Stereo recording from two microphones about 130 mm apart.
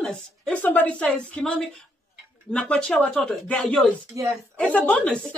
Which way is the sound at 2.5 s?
5° left (ahead or behind).